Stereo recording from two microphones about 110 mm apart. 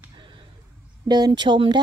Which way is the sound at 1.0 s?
40° right (ahead or behind).